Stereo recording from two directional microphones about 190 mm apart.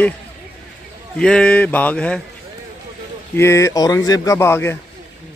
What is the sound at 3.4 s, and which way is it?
Speech, 15° left (ahead or behind).